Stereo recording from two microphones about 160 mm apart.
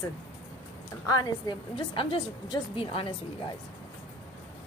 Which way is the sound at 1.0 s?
25° left (ahead or behind).